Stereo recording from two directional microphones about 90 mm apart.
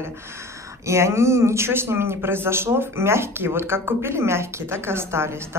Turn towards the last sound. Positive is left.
turn(degrees=-30)  # may be behind; listen again after turning